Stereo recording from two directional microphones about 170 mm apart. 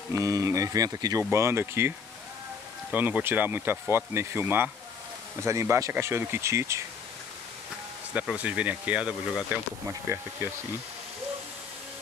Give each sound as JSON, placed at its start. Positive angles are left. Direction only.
{"t": 0.1, "sound": "speech", "side_deg": -20}
{"t": 8.1, "sound": "speech", "side_deg": -5}